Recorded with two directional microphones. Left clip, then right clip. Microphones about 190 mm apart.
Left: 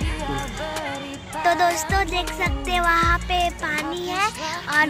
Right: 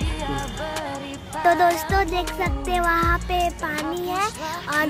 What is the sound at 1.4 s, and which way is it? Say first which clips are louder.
Music: right 1 dB; 30° right (ahead or behind).